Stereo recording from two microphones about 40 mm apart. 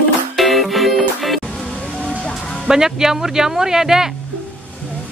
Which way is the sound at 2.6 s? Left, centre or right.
Centre.